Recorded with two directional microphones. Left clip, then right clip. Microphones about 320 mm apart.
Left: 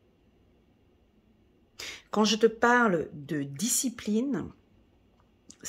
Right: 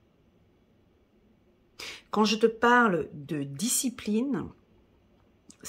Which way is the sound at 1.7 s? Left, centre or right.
Centre.